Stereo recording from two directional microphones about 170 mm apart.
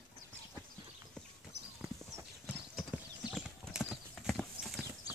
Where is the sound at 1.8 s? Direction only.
Centre (ahead or behind).